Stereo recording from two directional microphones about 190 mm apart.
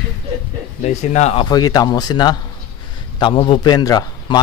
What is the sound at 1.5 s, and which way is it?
Speech, 20° left (ahead or behind).